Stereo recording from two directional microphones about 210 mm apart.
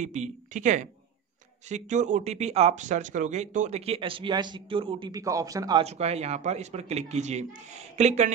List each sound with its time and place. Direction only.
0.0 s a man's voice: 35° right (ahead or behind); by 5.9 s 20° right (ahead or behind)
5.9 s a man's voice: 30° right (ahead or behind)